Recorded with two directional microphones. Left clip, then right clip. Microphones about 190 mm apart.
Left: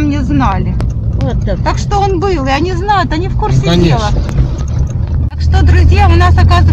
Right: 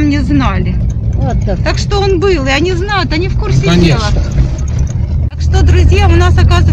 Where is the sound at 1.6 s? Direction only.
Centre (ahead or behind).